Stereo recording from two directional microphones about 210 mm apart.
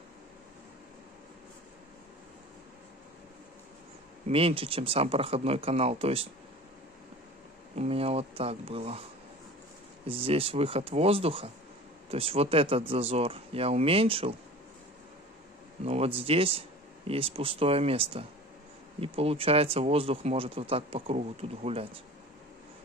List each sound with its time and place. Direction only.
4.3 s speech: 25° right (ahead or behind)
7.7 s speech: 30° right (ahead or behind)
10.0 s speech: 25° right (ahead or behind)
15.8 s speech: 30° right (ahead or behind)